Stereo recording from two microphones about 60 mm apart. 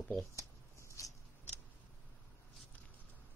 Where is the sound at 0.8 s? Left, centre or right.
Left.